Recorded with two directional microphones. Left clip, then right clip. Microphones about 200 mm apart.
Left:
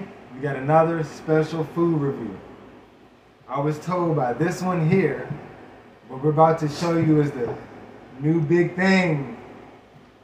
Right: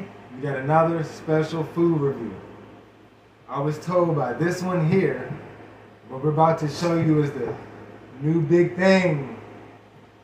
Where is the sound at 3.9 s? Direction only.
10° left (ahead or behind).